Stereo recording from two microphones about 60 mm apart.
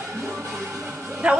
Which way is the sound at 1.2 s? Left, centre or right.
Centre.